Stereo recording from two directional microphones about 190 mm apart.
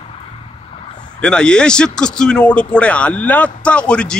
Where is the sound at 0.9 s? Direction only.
20° left (ahead or behind).